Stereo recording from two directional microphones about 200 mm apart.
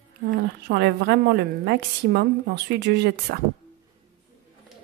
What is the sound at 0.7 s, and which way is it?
Speech, 55° right (ahead or behind).